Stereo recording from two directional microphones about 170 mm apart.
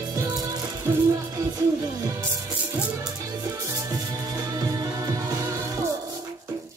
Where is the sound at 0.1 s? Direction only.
20° right (ahead or behind).